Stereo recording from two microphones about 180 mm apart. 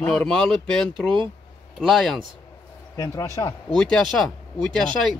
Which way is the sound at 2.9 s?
15° left (ahead or behind).